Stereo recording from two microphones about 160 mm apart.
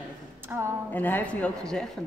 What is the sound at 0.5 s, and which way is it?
Speech, 15° right (ahead or behind).